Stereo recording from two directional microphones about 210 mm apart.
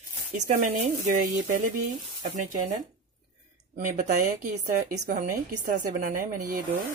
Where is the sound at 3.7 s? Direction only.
35° right (ahead or behind).